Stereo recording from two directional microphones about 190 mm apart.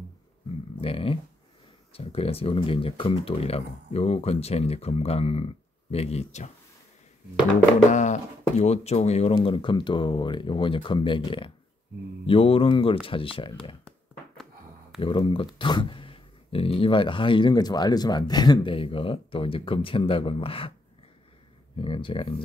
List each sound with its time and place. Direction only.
0.7 s speech: 30° left (ahead or behind)
7.9 s speech: 40° left (ahead or behind)
13.8 s a sound: centre (ahead or behind)
15.0 s speech: 25° left (ahead or behind)
21.7 s speech: 30° left (ahead or behind)